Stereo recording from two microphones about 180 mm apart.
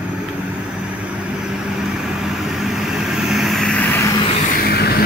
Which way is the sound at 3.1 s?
Centre (ahead or behind).